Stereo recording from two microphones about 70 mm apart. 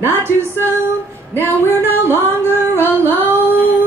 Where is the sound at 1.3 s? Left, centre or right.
Right.